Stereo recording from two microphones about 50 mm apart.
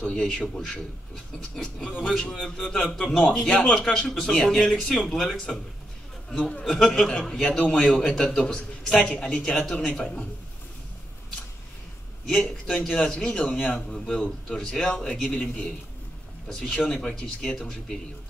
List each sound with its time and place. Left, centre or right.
0.0 s a man's voice: centre
1.6 s a man's voice: centre
6.8 s a man's voice: centre
12.3 s a man's voice: centre